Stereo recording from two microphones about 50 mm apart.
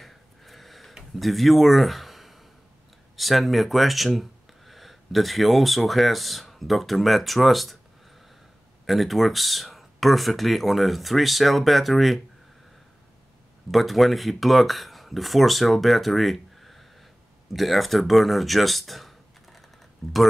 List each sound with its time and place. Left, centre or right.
0.0 s a sound: centre
1.1 s speech: centre
8.8 s speech: centre
13.7 s speech: centre